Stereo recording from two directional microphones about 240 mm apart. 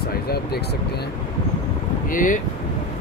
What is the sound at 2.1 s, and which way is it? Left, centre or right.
Speech, left.